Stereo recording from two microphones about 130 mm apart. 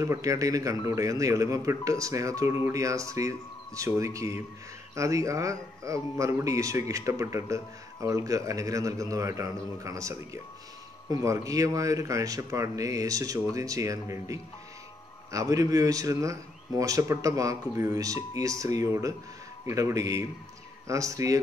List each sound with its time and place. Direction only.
0.0 s speech: 25° right (ahead or behind)